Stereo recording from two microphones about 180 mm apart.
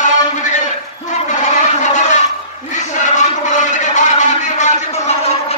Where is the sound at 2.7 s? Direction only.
40° left (ahead or behind).